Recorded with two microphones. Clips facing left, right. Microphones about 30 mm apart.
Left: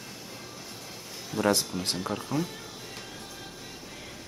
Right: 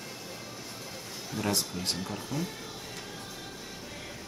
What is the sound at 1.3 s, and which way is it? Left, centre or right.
Speech, centre.